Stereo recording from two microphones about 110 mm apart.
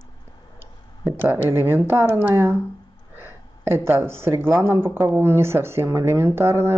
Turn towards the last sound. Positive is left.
turn(degrees=-20)  # may be behind; listen again after turning